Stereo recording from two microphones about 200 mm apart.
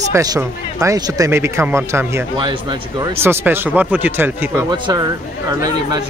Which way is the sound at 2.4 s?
25° right (ahead or behind).